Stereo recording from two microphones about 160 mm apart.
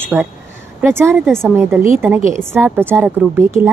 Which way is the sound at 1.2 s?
5° left (ahead or behind).